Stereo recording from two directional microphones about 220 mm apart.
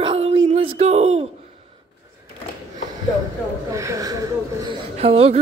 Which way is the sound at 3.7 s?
15° right (ahead or behind).